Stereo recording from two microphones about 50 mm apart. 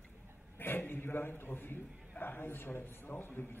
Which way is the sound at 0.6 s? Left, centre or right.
Left.